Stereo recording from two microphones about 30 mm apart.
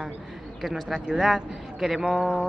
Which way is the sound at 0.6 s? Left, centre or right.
Centre.